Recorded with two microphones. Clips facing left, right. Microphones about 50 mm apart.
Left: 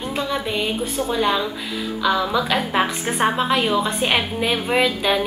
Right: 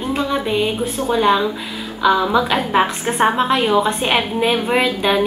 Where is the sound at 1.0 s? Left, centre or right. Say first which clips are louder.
Right 6 dB; centre.